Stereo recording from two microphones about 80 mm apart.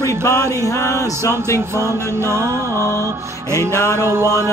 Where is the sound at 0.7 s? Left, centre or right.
Left.